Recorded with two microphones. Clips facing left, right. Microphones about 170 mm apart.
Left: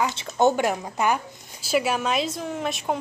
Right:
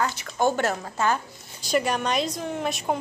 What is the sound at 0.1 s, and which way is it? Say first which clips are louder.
A woman's voice: left 3 dB; 25° left (ahead or behind).